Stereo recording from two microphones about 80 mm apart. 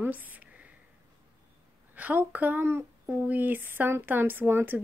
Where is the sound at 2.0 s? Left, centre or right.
Right.